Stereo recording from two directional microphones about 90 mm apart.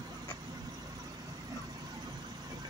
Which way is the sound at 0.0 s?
50° right (ahead or behind).